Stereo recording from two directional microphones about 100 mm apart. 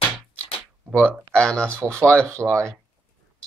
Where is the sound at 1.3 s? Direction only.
10° left (ahead or behind).